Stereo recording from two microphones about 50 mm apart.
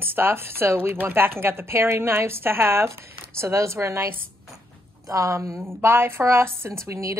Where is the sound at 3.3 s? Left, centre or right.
Right.